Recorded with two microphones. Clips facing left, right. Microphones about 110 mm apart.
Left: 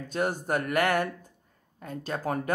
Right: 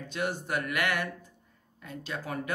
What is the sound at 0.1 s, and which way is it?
Speech, 45° left (ahead or behind).